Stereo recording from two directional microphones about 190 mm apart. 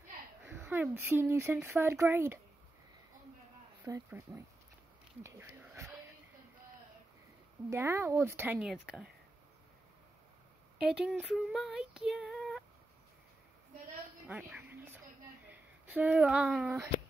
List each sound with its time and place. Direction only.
0.5 s speech: 10° right (ahead or behind)
3.8 s speech: 15° right (ahead or behind)
7.7 s speech: 10° right (ahead or behind)
10.9 s female singing: 5° right (ahead or behind)
14.2 s a sound: 10° right (ahead or behind)
15.4 s speech: 10° right (ahead or behind)